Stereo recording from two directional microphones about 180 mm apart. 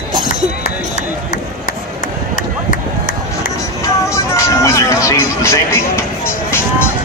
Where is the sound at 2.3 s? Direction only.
45° left (ahead or behind).